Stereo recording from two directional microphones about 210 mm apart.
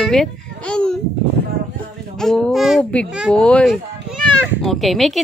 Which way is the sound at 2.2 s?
Centre (ahead or behind).